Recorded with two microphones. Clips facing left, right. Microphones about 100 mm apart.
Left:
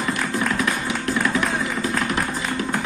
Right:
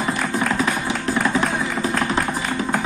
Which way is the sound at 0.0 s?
30° right (ahead or behind).